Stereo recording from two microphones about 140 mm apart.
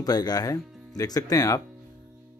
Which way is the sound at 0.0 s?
25° left (ahead or behind).